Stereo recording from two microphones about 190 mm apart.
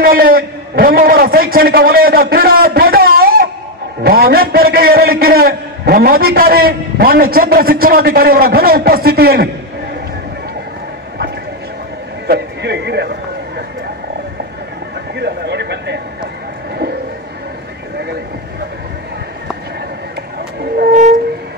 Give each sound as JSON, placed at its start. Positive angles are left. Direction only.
{"t": 0.0, "sound": "a man's voice", "side_deg": -50}
{"t": 12.3, "sound": "a man's voice", "side_deg": -65}
{"t": 15.1, "sound": "a sound", "side_deg": -60}
{"t": 20.8, "sound": "train", "side_deg": -40}